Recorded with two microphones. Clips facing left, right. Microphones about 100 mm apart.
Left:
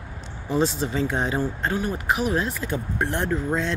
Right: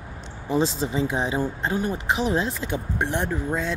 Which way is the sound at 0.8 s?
20° right (ahead or behind).